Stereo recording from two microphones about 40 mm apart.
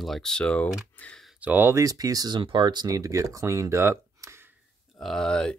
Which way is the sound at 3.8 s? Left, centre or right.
Right.